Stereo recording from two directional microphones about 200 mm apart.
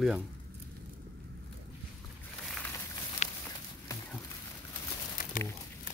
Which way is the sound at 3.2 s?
35° left (ahead or behind).